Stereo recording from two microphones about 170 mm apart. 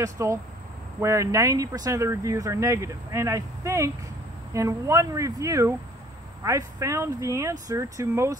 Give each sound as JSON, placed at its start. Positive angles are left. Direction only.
{"t": 0.0, "sound": "speech", "side_deg": -20}